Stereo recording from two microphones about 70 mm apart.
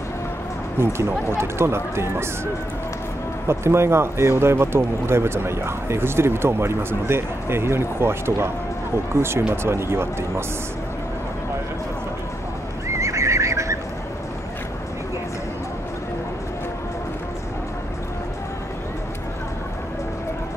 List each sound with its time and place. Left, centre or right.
0.7 s speech: right
12.8 s neigh: right